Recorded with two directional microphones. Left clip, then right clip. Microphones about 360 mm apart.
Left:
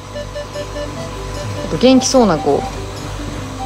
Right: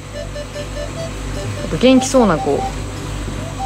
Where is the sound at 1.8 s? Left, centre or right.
Centre.